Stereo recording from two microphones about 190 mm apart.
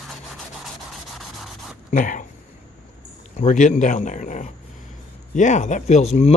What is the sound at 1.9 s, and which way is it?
Speech, 45° left (ahead or behind).